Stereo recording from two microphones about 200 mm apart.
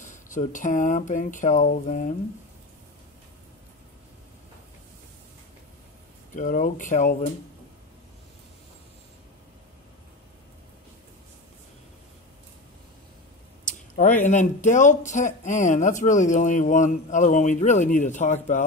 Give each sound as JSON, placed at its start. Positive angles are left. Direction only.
{"t": 0.0, "sound": "speech", "side_deg": 40}
{"t": 6.3, "sound": "speech", "side_deg": 40}
{"t": 13.9, "sound": "speech", "side_deg": 40}